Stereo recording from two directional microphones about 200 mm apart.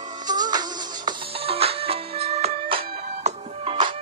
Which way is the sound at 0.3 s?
20° right (ahead or behind).